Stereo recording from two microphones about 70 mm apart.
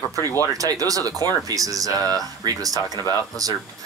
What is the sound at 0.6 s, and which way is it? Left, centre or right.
Speech, right.